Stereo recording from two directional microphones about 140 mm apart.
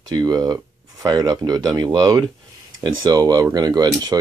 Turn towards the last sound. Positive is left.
turn(degrees=-30)  # may be behind; listen again after turning